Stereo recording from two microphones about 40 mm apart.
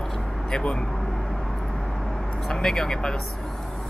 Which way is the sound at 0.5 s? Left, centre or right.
Left.